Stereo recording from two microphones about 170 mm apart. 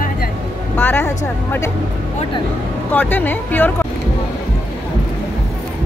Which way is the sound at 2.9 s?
10° left (ahead or behind).